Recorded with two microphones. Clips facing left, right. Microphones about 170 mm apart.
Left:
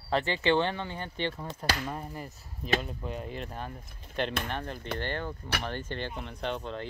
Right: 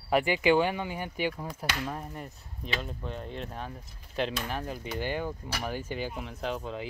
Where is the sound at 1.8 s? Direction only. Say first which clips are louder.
Even; centre (ahead or behind).